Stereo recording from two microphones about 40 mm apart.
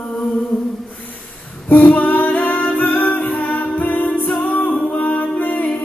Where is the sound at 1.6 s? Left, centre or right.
Left.